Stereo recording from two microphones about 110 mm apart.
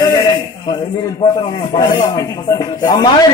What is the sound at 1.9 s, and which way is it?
Speech, 30° left (ahead or behind).